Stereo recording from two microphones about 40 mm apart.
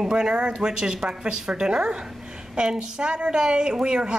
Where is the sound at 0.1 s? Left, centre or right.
Right.